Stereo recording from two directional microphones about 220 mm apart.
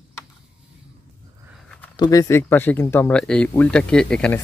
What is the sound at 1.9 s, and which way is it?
Speech, 15° left (ahead or behind).